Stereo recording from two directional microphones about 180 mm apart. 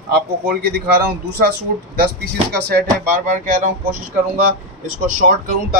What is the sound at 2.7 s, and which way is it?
Speech, 55° right (ahead or behind).